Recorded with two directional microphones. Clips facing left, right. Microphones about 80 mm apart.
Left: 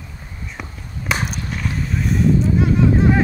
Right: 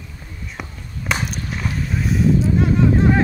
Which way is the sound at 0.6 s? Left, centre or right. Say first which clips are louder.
Right 1 dB; centre.